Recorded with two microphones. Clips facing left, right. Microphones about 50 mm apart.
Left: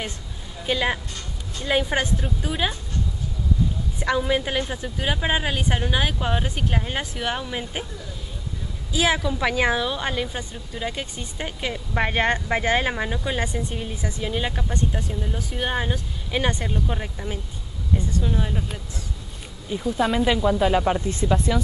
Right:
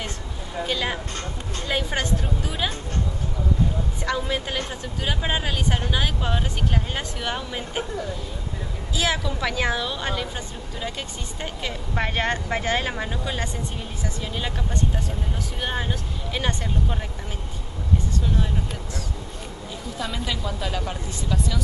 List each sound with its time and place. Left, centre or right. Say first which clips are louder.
0.7 s a woman's voice: left 5 dB; centre
4.0 s a woman's voice: left 5 dB; centre
8.9 s a woman's voice: left 3 dB; centre
20.2 s speech: left 9 dB; left